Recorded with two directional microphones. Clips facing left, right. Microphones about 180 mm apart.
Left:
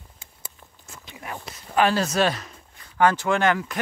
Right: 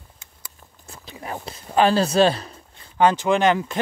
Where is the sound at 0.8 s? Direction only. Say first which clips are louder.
Right 4 dB; 35° right (ahead or behind).